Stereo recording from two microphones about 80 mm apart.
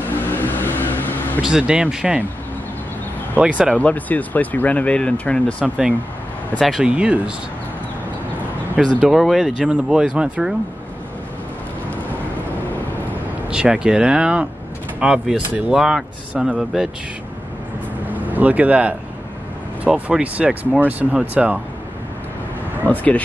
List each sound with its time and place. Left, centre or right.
0.3 s vehicle: left
1.4 s speech: centre
3.3 s speech: centre
3.7 s speech: centre
5.6 s speech: centre
6.8 s speech: centre
8.8 s speech: centre
9.1 s speech: centre
13.5 s speech: centre
18.1 s speech: right
22.8 s speech: centre